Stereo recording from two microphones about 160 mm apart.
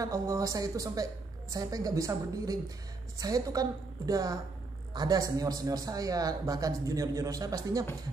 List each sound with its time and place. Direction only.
0.0 s speech: 20° right (ahead or behind)